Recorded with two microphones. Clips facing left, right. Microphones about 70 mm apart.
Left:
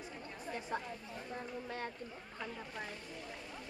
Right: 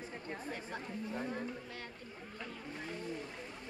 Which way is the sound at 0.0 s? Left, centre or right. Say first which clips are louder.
Right 3 dB; right.